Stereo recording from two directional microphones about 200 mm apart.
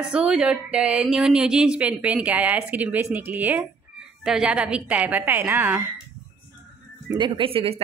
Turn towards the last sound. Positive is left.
turn(degrees=-25)  # may be behind; listen again after turning